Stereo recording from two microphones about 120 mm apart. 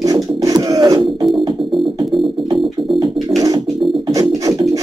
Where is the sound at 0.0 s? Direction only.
30° right (ahead or behind).